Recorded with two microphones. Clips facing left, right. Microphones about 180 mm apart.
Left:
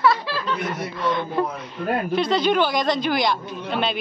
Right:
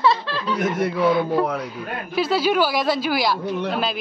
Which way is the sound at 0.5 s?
50° right (ahead or behind).